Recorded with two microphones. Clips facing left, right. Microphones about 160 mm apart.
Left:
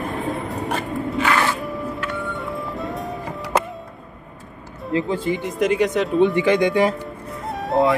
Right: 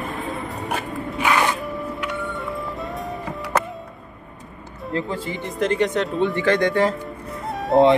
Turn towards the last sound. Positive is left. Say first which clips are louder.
# right 3 dB
turn(degrees=0)  # may be behind; listen again after turning